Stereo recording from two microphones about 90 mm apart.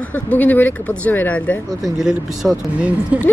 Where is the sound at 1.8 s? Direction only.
5° right (ahead or behind).